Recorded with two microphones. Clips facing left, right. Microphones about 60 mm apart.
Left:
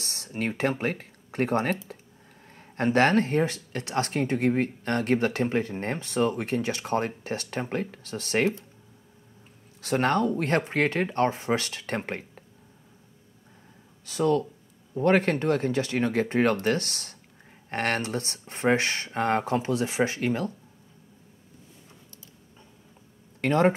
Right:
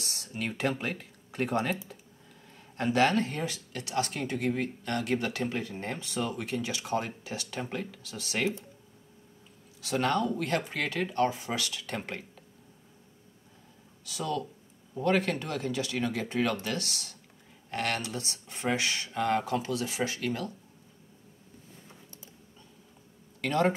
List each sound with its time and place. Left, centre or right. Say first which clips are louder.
0.0 s speech: left 5 dB; left
9.8 s speech: left 4 dB; left
14.0 s speech: left 9 dB; left
23.4 s speech: left 5 dB; left